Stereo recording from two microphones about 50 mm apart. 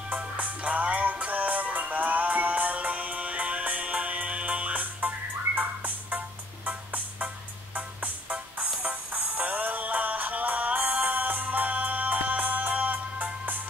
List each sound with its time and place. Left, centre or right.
0.1 s music: right